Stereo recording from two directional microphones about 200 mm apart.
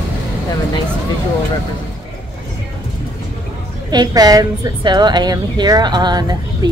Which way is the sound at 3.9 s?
20° right (ahead or behind).